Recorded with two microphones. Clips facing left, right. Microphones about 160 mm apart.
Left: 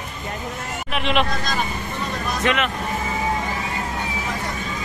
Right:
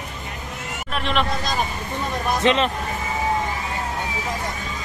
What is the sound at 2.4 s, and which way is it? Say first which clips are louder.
Speech: right 3 dB; 25° right (ahead or behind).